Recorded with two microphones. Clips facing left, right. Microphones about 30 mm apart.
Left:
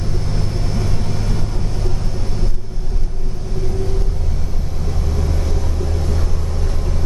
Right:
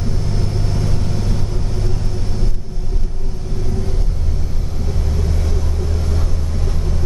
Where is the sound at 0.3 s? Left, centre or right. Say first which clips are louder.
Right 1 dB; centre.